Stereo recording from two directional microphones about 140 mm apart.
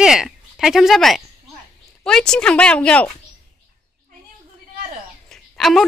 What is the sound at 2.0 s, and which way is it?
Speech, 5° left (ahead or behind).